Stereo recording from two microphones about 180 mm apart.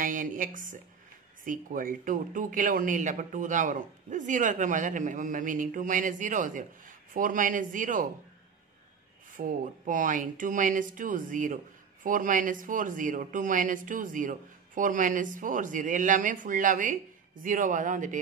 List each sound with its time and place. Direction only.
0.0 s a woman's voice: 45° right (ahead or behind)
9.3 s speech: 50° right (ahead or behind)